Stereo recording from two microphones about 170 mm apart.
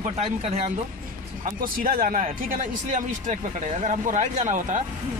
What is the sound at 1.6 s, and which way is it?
Speech, 55° right (ahead or behind).